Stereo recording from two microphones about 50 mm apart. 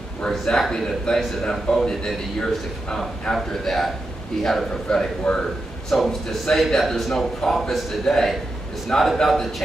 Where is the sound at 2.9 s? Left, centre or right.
Centre.